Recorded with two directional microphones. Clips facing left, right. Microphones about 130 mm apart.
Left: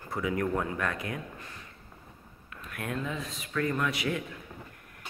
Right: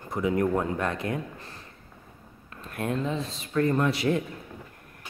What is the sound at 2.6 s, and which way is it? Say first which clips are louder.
Speech: right 6 dB; 30° right (ahead or behind).